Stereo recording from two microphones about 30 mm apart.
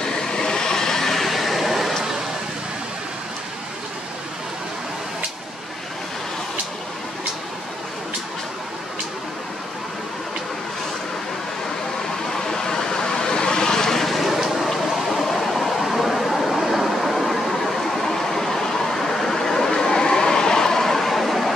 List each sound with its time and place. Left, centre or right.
0.0 s vehicle: left; by 2.0 s centre
12.3 s vehicle: centre
14.4 s a sound: centre